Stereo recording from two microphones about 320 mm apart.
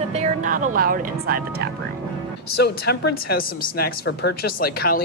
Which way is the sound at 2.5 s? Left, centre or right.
Left.